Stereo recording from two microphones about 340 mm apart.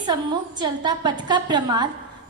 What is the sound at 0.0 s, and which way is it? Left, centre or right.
A woman's voice, centre.